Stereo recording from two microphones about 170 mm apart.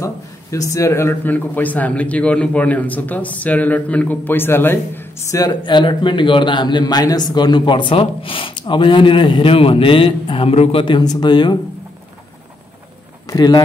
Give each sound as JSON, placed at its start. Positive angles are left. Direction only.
{"t": 0.0, "sound": "a sound", "side_deg": 20}
{"t": 0.7, "sound": "a man's voice", "side_deg": 15}
{"t": 13.3, "sound": "speech", "side_deg": 20}